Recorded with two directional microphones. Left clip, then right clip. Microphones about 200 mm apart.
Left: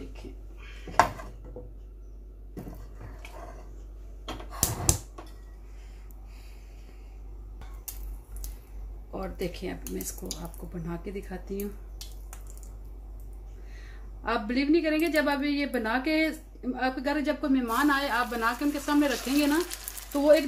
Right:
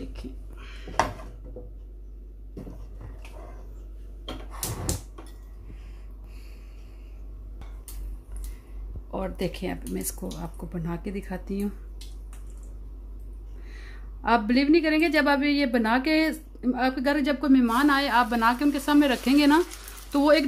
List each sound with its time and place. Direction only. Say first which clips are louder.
9.1 s a woman's voice: right 4 dB; 50° right (ahead or behind)
13.7 s a woman's voice: right 4 dB; 50° right (ahead or behind)